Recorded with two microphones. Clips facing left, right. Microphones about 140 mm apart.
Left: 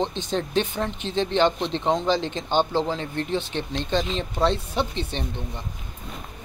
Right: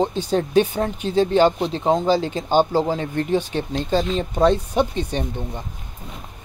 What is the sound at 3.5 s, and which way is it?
Speech, 10° right (ahead or behind).